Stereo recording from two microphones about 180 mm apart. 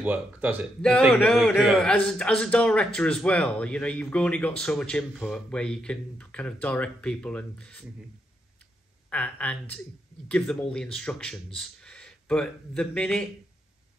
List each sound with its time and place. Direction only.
0.0 s speech: 10° right (ahead or behind)
1.1 s a man's voice: 5° left (ahead or behind)
9.1 s a man's voice: 10° left (ahead or behind)